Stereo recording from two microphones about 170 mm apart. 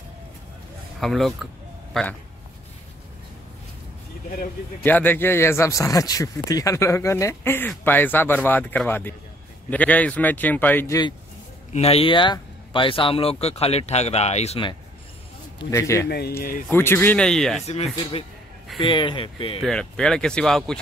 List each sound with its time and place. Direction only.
1.0 s speech: centre (ahead or behind)
4.8 s speech: 10° left (ahead or behind)
11.7 s speech: 35° left (ahead or behind)
15.7 s speech: 15° left (ahead or behind)
16.1 s speech: 65° left (ahead or behind)
16.6 s speech: 15° left (ahead or behind)
17.6 s speech: 40° left (ahead or behind)
19.6 s speech: 5° left (ahead or behind)